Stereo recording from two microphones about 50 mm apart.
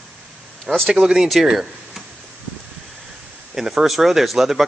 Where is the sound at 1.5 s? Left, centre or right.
Centre.